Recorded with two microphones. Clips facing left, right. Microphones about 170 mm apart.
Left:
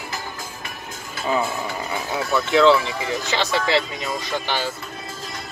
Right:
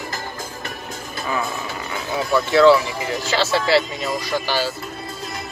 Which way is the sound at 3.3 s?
15° left (ahead or behind).